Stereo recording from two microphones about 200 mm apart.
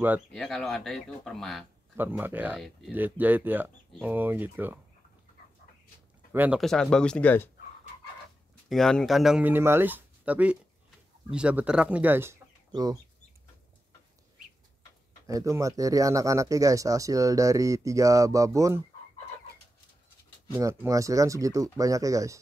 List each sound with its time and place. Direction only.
0.3 s speech: centre (ahead or behind)
2.0 s speech: 10° right (ahead or behind)
6.3 s speech: 10° right (ahead or behind)
6.6 s speech: centre (ahead or behind)
8.6 s speech: centre (ahead or behind); by 13.0 s 20° right (ahead or behind)
15.2 s speech: 15° right (ahead or behind)
20.5 s speech: 15° right (ahead or behind)